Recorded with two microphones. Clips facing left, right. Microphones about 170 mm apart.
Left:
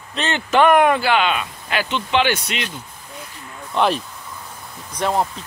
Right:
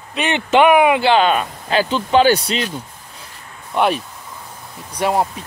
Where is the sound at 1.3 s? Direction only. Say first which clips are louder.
Right 5 dB; 45° right (ahead or behind).